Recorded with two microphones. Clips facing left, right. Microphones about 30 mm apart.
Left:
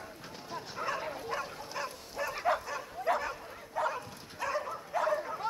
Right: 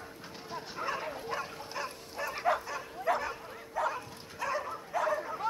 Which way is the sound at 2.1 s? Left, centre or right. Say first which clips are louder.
Left 1 dB; centre.